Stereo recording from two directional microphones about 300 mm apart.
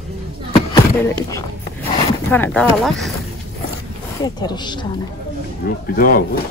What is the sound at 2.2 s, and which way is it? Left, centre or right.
Speech, centre.